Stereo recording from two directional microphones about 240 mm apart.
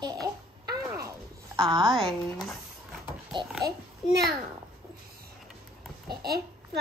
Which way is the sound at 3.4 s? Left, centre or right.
Centre.